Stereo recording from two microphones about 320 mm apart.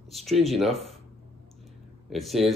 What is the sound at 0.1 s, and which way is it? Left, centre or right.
Speech, centre.